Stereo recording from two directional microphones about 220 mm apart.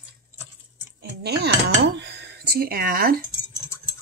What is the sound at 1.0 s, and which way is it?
Dishes, 50° right (ahead or behind).